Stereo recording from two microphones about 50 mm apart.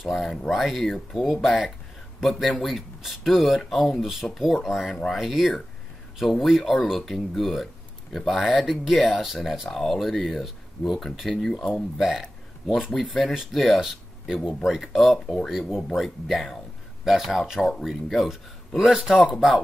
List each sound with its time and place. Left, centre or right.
0.5 s speech: centre
11.5 s speech: left
12.0 s a man's voice: centre